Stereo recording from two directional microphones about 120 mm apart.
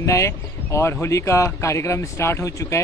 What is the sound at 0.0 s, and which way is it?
Speech, 25° left (ahead or behind).